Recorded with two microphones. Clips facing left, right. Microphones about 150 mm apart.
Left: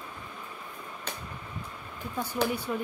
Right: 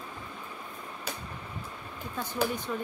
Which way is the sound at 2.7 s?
10° left (ahead or behind).